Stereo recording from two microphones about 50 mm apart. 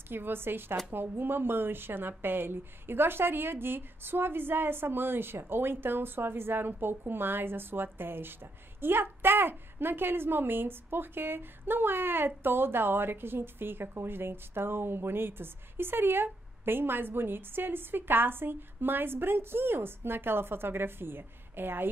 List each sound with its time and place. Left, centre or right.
0.1 s a woman's voice: right